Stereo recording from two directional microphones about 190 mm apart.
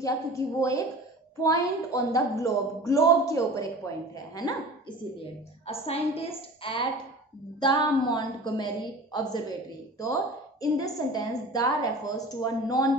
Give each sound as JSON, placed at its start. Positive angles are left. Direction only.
{"t": 0.0, "sound": "a woman's voice", "side_deg": 15}
{"t": 10.6, "sound": "a woman's voice", "side_deg": 20}